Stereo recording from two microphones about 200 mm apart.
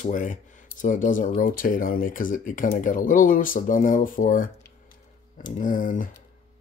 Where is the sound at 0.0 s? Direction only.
40° left (ahead or behind).